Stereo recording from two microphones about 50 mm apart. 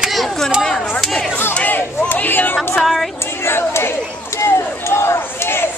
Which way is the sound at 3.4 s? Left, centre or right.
Left.